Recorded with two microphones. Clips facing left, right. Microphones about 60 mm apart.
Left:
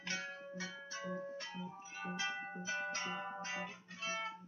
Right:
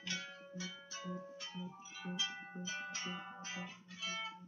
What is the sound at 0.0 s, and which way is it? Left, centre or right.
Music, left.